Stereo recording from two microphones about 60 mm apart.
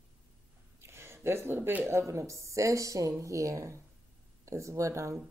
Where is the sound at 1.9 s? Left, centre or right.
Right.